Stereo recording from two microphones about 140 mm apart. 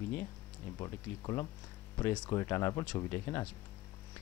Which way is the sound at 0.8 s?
25° left (ahead or behind).